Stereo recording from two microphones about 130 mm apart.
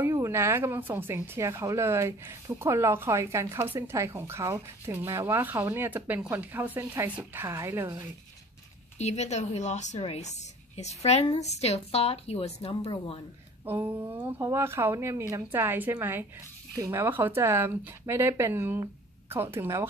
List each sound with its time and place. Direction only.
0.0 s speech: 20° right (ahead or behind)
8.9 s a woman's voice: 60° left (ahead or behind)
12.8 s speech: 35° left (ahead or behind)
13.7 s speech: 15° right (ahead or behind)